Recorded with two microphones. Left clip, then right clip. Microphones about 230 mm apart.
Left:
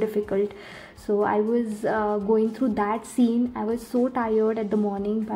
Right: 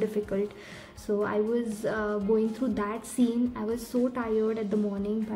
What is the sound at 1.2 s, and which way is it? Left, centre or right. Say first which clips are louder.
Speech: left 5 dB; centre.